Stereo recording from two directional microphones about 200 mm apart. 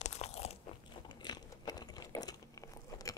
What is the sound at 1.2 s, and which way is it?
Biting, 20° left (ahead or behind).